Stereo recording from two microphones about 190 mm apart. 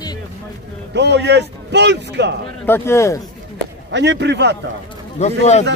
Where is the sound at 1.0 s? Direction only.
65° right (ahead or behind).